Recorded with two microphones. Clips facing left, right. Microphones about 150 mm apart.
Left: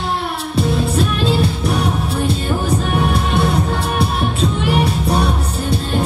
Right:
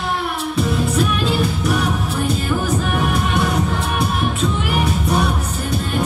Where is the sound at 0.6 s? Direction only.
30° left (ahead or behind).